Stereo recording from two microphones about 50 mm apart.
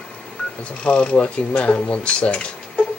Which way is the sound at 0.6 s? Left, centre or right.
Left.